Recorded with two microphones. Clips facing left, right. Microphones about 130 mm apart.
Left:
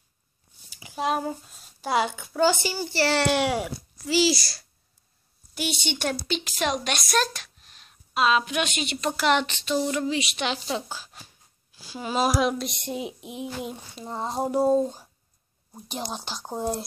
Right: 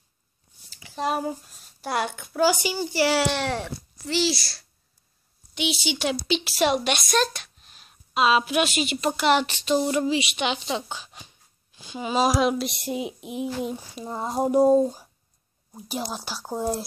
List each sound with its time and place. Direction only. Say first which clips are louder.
0.9 s speech: even; centre (ahead or behind)
2.5 s speech: right 2 dB; 15° right (ahead or behind)
3.3 s a woman's voice: left 3 dB; 10° left (ahead or behind); by 10.0 s 20° right (ahead or behind)
10.0 s speech: right 2 dB; 5° right (ahead or behind)
15.7 s speech: right 2 dB; centre (ahead or behind)